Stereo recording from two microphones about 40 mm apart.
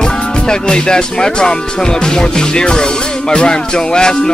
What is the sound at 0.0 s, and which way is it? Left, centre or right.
Speech, centre.